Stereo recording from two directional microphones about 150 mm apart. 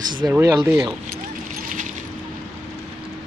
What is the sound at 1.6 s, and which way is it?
Coin, 60° right (ahead or behind).